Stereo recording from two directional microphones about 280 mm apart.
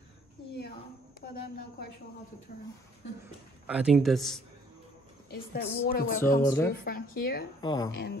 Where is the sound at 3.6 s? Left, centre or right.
Centre.